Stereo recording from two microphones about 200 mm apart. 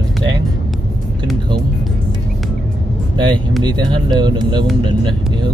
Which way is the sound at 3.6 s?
20° right (ahead or behind).